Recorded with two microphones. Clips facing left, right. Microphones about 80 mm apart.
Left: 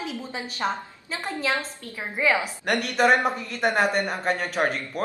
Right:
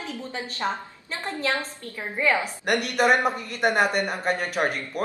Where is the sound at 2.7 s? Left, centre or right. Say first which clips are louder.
Even; centre.